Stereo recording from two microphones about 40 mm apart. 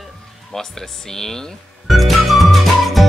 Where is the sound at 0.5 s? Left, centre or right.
Centre.